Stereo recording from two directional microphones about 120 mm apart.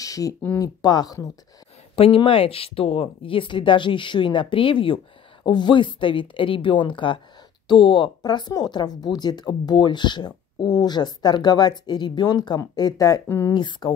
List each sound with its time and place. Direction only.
0.0 s a sound: 30° left (ahead or behind)
0.6 s speech: 35° left (ahead or behind)
2.0 s speech: 50° left (ahead or behind)